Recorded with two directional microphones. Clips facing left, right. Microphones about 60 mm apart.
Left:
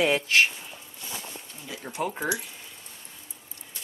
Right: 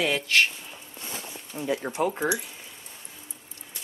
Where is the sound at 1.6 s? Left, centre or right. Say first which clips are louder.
Right 13 dB; right.